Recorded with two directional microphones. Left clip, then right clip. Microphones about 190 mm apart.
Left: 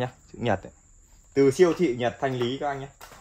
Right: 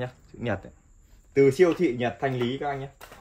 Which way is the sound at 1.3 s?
15° left (ahead or behind).